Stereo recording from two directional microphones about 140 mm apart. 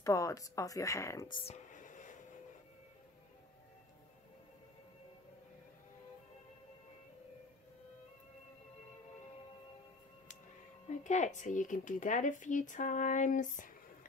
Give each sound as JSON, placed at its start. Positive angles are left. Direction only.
{"t": 0.0, "sound": "speech", "side_deg": 25}
{"t": 1.5, "sound": "a sound", "side_deg": 65}
{"t": 11.1, "sound": "speech", "side_deg": 60}